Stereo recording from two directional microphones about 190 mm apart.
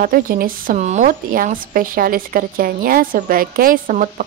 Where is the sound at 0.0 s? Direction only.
50° right (ahead or behind).